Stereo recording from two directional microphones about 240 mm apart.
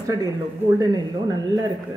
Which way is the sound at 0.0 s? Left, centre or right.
Centre.